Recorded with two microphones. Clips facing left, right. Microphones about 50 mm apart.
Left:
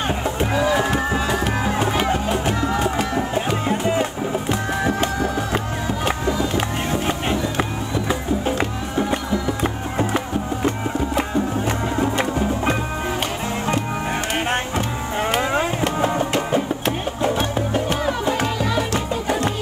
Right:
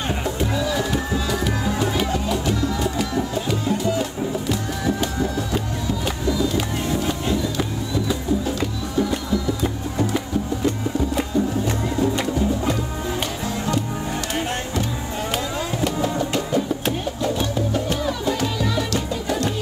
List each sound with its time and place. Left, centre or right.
0.4 s music: left
15.3 s music: left